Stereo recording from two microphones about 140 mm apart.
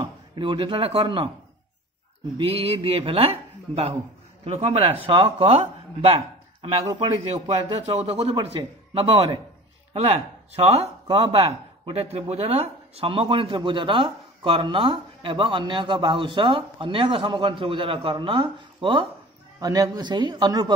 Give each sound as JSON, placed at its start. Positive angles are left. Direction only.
{"t": 0.0, "sound": "speech", "side_deg": -35}
{"t": 2.3, "sound": "speech", "side_deg": -45}
{"t": 19.6, "sound": "speech", "side_deg": -25}